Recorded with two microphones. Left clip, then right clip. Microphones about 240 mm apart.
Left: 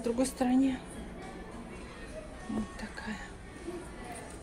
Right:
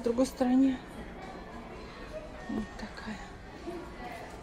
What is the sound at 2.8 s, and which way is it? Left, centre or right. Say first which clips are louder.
Speech: left 1 dB; centre.